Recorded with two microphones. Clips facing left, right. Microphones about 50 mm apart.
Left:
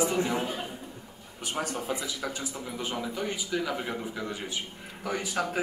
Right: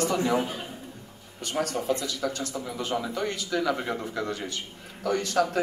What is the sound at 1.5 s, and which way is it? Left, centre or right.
A man's voice, centre.